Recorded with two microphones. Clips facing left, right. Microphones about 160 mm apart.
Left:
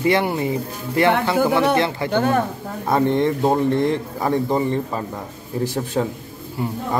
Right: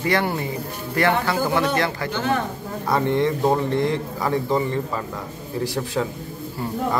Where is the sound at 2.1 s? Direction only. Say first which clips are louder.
Left 6 dB; 50° left (ahead or behind).